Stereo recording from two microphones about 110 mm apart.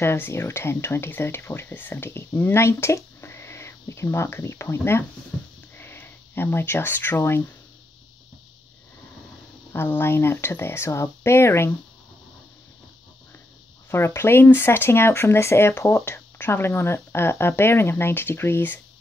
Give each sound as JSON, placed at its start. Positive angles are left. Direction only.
{"t": 0.0, "sound": "speech", "side_deg": 25}
{"t": 9.7, "sound": "speech", "side_deg": 20}
{"t": 13.8, "sound": "speech", "side_deg": 20}